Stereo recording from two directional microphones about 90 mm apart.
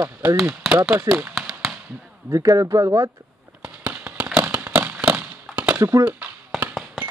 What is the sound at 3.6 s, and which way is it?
Firecracker, 15° right (ahead or behind).